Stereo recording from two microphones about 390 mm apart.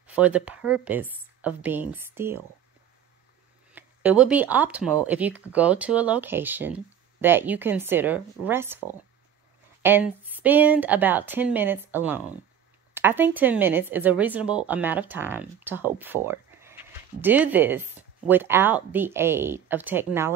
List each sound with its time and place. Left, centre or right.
0.0 s speech: centre
3.7 s speech: centre